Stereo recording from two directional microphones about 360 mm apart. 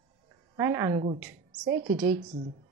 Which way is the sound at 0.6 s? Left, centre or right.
Centre.